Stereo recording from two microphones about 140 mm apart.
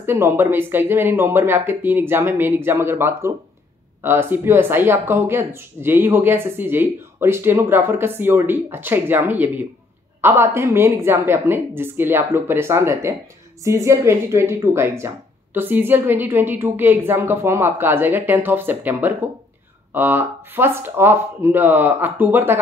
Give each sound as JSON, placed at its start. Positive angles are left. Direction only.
{"t": 0.0, "sound": "speech", "side_deg": -15}